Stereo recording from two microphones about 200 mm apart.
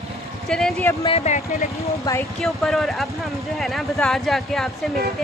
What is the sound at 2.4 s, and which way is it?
Speech, centre (ahead or behind).